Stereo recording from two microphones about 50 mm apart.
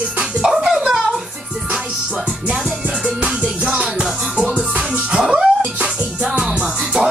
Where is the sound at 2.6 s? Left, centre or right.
Centre.